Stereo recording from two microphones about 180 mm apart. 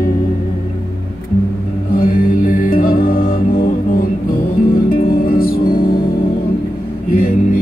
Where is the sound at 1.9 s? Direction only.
50° left (ahead or behind).